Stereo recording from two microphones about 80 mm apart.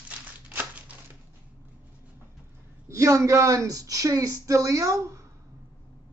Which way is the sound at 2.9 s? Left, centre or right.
Right.